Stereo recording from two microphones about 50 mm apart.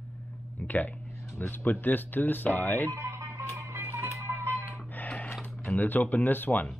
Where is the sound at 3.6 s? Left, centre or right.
Right.